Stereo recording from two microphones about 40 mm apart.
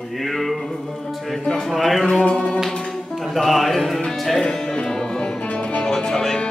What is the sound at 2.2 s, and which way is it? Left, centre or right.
Music, left.